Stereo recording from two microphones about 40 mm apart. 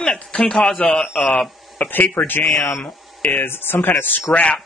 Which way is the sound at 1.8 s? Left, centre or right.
Left.